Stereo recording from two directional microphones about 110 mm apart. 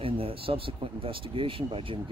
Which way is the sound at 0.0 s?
55° right (ahead or behind).